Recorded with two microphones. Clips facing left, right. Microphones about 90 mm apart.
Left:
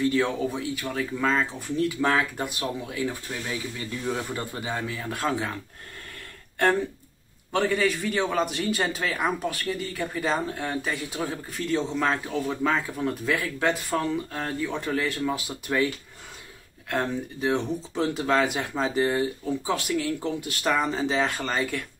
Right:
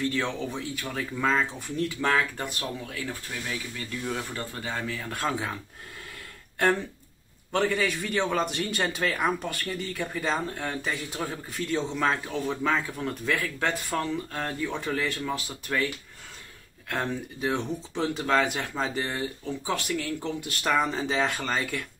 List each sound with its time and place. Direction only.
0.1 s a man's voice: 5° left (ahead or behind)
7.5 s a man's voice: centre (ahead or behind)
16.9 s a man's voice: centre (ahead or behind)